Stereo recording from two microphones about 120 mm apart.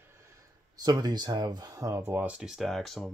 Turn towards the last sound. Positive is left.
turn(degrees=0)  # may be behind; listen again after turning